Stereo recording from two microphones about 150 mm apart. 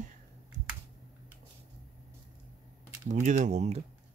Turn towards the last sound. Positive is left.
turn(degrees=-45)  # may be behind; listen again after turning